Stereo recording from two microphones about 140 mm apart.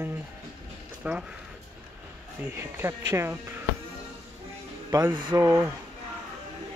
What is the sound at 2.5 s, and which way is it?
Speech, 15° right (ahead or behind).